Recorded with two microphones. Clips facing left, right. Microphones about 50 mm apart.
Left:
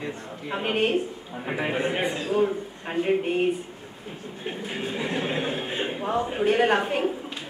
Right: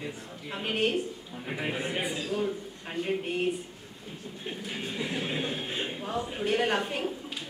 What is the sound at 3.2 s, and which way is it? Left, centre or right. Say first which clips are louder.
Speech: left 6 dB; centre.